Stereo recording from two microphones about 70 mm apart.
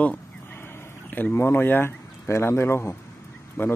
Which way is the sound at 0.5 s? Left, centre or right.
Left.